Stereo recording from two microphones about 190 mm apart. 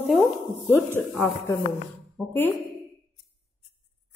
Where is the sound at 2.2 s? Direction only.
5° right (ahead or behind).